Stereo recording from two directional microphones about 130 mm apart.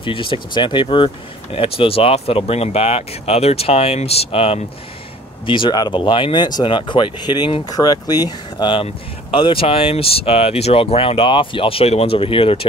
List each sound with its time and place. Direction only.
0.0 s speech: 40° left (ahead or behind)
5.5 s speech: 35° left (ahead or behind)